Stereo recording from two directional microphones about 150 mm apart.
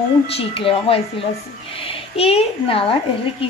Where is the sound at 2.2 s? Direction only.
40° left (ahead or behind).